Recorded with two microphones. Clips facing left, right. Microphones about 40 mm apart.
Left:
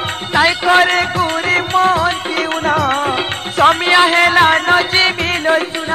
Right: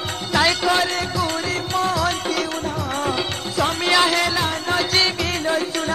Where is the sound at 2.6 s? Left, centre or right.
Left.